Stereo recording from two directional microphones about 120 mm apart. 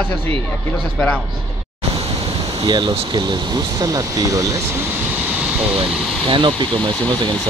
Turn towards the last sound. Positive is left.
turn(degrees=-45)  # may be behind; listen again after turning